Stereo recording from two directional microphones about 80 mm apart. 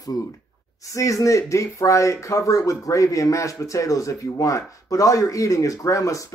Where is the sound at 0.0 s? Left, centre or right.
Left.